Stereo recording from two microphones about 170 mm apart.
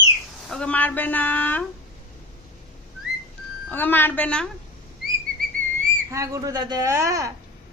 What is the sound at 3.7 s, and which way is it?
Speech, 10° left (ahead or behind).